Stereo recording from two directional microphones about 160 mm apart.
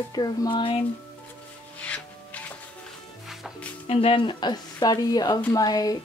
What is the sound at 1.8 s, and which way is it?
Music, 10° left (ahead or behind).